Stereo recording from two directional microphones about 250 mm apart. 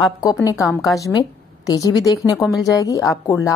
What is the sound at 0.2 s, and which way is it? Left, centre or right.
A woman's voice, centre.